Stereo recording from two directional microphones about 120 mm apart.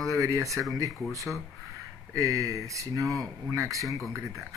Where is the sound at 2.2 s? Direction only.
30° right (ahead or behind).